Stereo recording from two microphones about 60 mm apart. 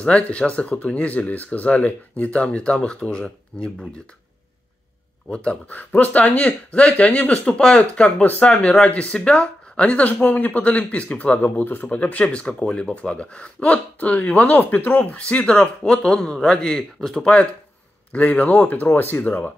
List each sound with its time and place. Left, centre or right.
0.0 s speech: centre
5.3 s speech: centre; by 11.9 s left
11.9 s speech: left
18.1 s speech: left